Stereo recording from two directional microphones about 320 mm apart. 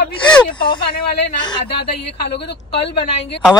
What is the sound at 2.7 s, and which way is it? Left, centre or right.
Speech, centre.